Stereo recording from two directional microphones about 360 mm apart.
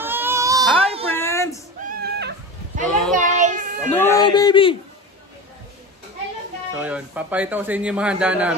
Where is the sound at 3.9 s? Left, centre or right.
Centre.